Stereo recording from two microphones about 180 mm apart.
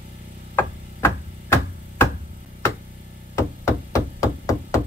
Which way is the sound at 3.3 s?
15° left (ahead or behind).